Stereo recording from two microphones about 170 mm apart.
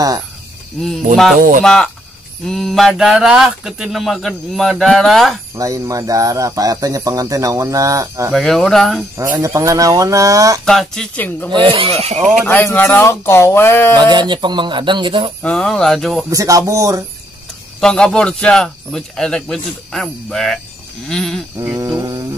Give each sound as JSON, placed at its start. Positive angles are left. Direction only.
{"t": 1.6, "sound": "speech", "side_deg": 5}
{"t": 5.6, "sound": "speech", "side_deg": -20}
{"t": 8.3, "sound": "speech", "side_deg": 0}
{"t": 9.1, "sound": "speech", "side_deg": -20}
{"t": 10.6, "sound": "speech", "side_deg": 5}
{"t": 11.5, "sound": "speech", "side_deg": -30}
{"t": 12.4, "sound": "speech", "side_deg": 10}
{"t": 13.9, "sound": "speech", "side_deg": -25}
{"t": 15.4, "sound": "speech", "side_deg": 5}
{"t": 16.3, "sound": "speech", "side_deg": -20}
{"t": 17.7, "sound": "speech", "side_deg": 5}
{"t": 21.5, "sound": "speech", "side_deg": -20}